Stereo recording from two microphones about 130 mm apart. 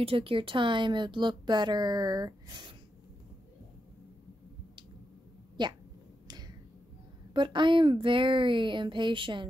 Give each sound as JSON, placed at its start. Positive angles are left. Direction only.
{"t": 0.0, "sound": "speech", "side_deg": -45}
{"t": 5.6, "sound": "speech", "side_deg": -35}
{"t": 6.2, "sound": "finger snapping", "side_deg": -30}
{"t": 7.3, "sound": "speech", "side_deg": -35}